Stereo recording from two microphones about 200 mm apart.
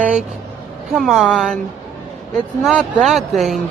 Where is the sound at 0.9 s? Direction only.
Centre (ahead or behind).